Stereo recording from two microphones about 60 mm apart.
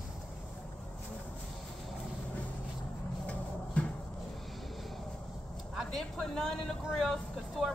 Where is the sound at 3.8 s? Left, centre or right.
Left.